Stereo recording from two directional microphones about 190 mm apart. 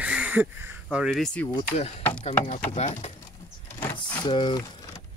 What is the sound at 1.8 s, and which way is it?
Speech, 35° left (ahead or behind).